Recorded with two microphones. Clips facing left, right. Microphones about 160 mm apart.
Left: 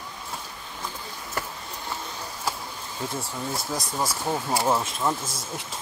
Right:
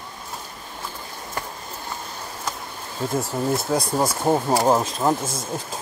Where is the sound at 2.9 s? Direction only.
45° right (ahead or behind).